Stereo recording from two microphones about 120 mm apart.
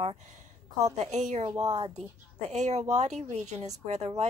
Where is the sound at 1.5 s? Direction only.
35° right (ahead or behind).